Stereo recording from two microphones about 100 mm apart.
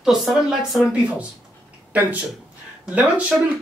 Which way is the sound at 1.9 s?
15° right (ahead or behind).